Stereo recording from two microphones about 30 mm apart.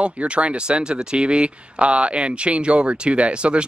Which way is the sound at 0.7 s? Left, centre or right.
Right.